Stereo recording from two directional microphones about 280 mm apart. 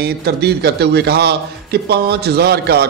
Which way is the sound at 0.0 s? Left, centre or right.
Right.